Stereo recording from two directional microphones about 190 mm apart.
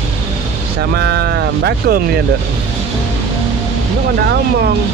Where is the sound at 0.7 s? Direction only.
60° right (ahead or behind).